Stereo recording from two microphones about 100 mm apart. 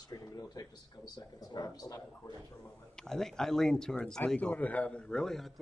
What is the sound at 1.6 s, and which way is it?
Speech, 35° left (ahead or behind).